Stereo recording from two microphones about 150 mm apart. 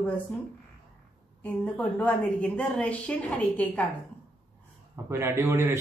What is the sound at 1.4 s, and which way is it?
A woman's voice, 10° left (ahead or behind).